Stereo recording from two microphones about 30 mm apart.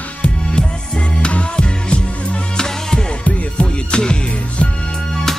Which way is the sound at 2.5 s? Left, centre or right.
Left.